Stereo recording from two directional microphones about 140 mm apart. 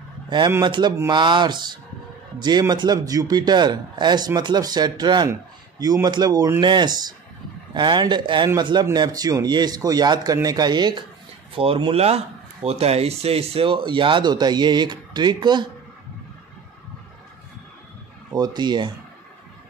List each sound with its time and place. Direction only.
0.7 s speech: 35° right (ahead or behind)
18.3 s speech: 30° right (ahead or behind)